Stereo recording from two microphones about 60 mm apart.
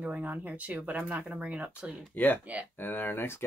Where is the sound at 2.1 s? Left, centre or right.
Left.